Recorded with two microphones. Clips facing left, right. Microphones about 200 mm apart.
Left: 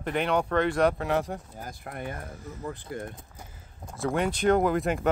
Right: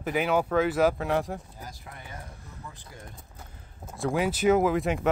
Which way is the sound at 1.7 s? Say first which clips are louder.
Left 11 dB; 55° left (ahead or behind).